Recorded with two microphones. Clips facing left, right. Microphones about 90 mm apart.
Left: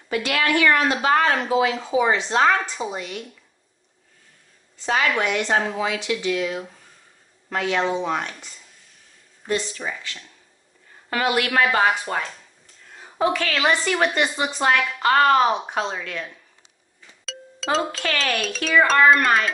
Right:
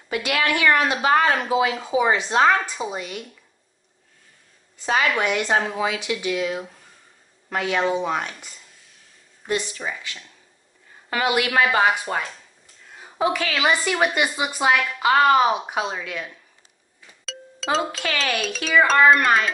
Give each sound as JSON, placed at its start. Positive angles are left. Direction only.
{"t": 0.1, "sound": "a woman's voice", "side_deg": -15}
{"t": 4.7, "sound": "a woman's voice", "side_deg": -10}
{"t": 7.4, "sound": "a sound", "side_deg": -10}
{"t": 9.5, "sound": "a woman's voice", "side_deg": -15}
{"t": 17.0, "sound": "a sound", "side_deg": 0}
{"t": 18.0, "sound": "speech", "side_deg": -5}